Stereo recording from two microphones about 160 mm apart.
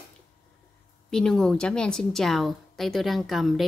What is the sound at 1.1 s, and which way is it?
A woman's voice, 5° left (ahead or behind).